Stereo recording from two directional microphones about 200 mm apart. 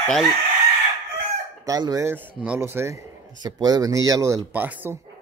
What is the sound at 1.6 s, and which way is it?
Speech, 15° right (ahead or behind).